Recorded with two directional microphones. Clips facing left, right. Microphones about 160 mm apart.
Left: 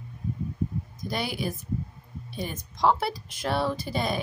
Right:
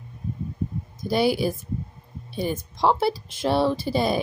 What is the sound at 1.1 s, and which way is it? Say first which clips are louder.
Speech: right 9 dB; 30° right (ahead or behind).